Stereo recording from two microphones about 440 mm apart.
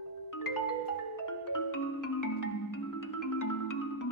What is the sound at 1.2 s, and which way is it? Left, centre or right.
Music, left.